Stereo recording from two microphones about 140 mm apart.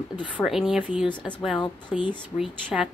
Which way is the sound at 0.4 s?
Centre (ahead or behind).